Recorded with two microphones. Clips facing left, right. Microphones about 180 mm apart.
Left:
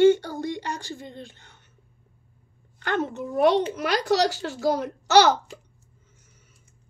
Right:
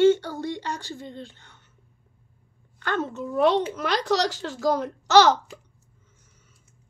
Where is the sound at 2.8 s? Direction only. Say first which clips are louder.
Left 1 dB; 15° left (ahead or behind).